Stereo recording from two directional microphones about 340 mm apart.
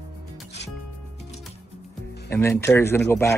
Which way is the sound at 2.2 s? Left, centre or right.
Centre.